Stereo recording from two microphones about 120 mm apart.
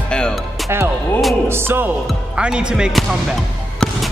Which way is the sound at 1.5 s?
20° right (ahead or behind).